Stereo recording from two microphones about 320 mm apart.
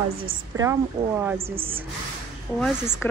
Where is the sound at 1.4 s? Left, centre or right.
Centre.